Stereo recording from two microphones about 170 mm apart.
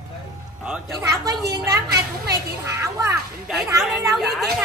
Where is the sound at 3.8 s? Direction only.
Centre (ahead or behind).